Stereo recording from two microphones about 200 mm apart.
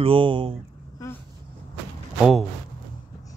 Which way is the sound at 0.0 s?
25° right (ahead or behind).